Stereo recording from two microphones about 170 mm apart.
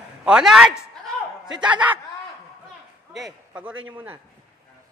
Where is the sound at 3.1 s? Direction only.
Centre (ahead or behind).